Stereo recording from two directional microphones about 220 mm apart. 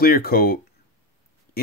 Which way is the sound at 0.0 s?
45° left (ahead or behind).